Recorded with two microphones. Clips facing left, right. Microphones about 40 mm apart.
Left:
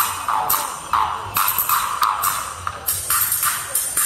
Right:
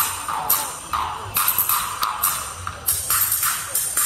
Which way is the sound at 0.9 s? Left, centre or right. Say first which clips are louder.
Left 5 dB; left.